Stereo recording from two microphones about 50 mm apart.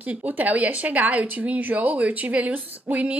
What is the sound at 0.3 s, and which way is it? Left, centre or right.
A woman's voice, right.